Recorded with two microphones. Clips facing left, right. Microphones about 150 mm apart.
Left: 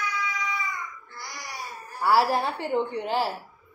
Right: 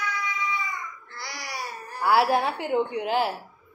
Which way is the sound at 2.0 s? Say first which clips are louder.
Right 1 dB; centre (ahead or behind).